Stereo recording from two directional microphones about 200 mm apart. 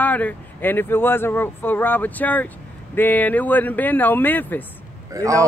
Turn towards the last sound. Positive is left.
turn(degrees=-15)  # may be behind; listen again after turning